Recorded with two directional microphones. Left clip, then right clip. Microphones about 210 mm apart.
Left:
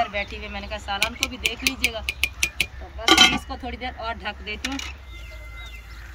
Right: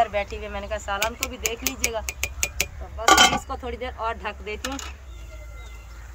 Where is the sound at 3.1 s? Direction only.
15° right (ahead or behind).